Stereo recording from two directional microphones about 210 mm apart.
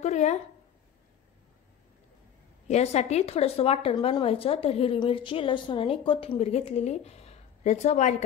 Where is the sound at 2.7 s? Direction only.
30° left (ahead or behind).